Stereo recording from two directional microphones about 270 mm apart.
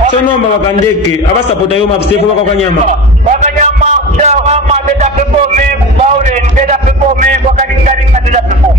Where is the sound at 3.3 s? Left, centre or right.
Right.